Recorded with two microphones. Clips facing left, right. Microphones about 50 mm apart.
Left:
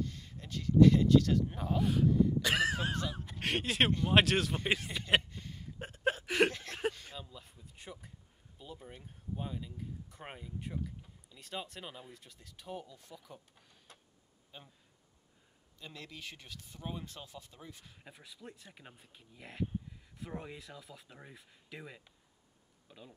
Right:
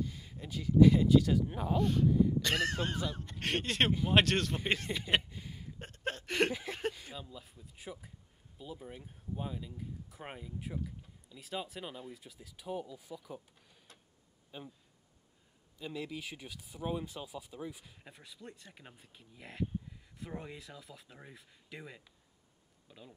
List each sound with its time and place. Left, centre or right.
0.0 s speech: centre
2.0 s speech: centre
2.4 s speech: centre
5.8 s whimper: centre
6.5 s a sound: centre
6.9 s speech: centre
15.8 s speech: centre